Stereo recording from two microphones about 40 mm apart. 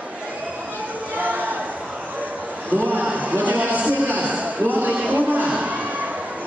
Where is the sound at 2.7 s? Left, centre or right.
Right.